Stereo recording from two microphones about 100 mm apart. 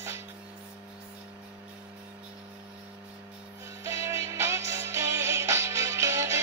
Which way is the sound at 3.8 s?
25° right (ahead or behind).